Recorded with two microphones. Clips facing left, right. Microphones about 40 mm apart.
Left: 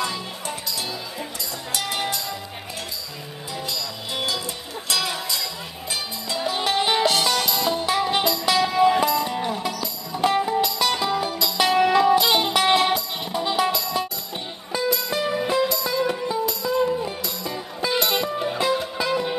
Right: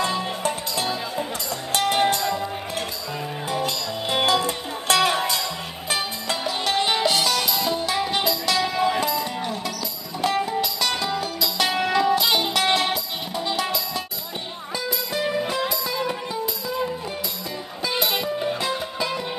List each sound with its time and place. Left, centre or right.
0.5 s music: right
3.6 s music: right
6.4 s music: centre
15.3 s music: centre